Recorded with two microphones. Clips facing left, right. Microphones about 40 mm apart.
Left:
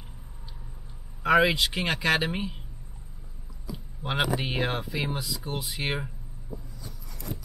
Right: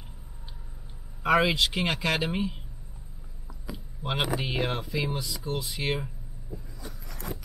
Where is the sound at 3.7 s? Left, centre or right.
Centre.